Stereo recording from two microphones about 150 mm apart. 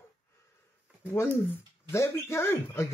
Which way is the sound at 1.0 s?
15° left (ahead or behind).